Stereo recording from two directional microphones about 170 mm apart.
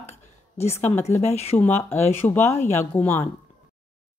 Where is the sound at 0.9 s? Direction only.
40° left (ahead or behind).